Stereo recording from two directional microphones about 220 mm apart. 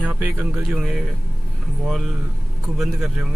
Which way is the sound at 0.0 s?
5° right (ahead or behind).